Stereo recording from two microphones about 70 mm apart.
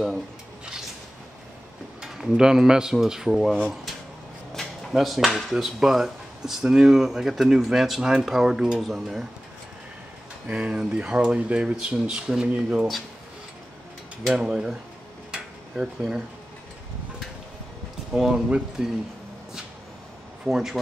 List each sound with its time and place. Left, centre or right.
2.0 s speech: centre
4.6 s speech: centre
10.5 s speech: centre
14.2 s speech: centre
15.3 s a sound: centre
18.1 s speech: centre
20.4 s speech: centre